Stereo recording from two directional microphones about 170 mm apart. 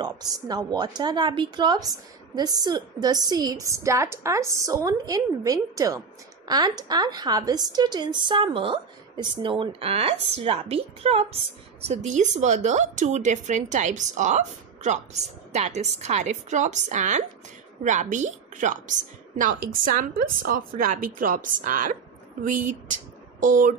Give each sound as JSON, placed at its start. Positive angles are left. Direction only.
{"t": 0.0, "sound": "a woman's voice", "side_deg": -20}